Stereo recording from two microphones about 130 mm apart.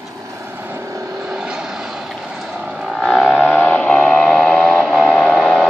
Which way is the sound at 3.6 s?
5° left (ahead or behind).